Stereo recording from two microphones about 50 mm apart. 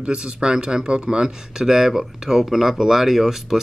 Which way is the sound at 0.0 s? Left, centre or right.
Centre.